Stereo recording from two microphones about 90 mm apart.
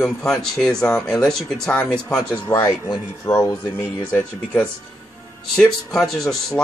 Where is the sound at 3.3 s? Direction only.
35° left (ahead or behind).